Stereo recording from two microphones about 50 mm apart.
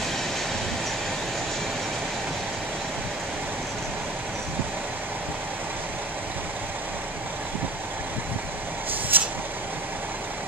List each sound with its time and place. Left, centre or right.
9.1 s vehicle: right